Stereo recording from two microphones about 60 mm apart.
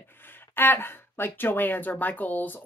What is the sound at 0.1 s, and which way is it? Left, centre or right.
Speech, left.